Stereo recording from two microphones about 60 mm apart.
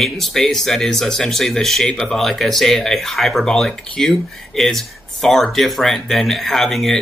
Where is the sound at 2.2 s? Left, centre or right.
Centre.